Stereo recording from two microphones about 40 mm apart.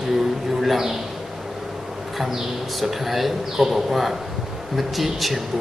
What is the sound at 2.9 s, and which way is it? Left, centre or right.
Speech, centre.